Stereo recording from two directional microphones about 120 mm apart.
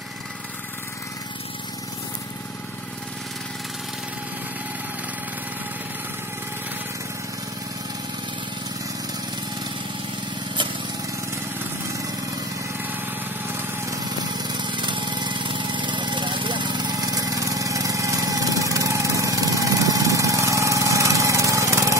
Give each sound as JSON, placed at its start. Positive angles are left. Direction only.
{"t": 13.5, "sound": "lawn mower", "side_deg": -20}
{"t": 14.4, "sound": "lawn mower", "side_deg": -40}